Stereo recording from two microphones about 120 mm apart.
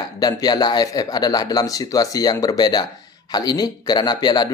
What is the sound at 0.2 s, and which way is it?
A man's voice, 35° left (ahead or behind).